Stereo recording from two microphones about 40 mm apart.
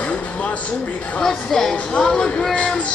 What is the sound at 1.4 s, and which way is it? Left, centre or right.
Speech, centre.